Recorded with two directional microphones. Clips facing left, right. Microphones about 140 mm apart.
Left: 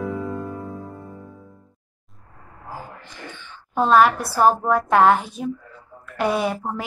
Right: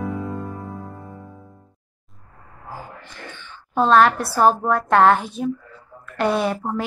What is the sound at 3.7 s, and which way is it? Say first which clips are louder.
A woman's voice: right 1 dB; 10° left (ahead or behind).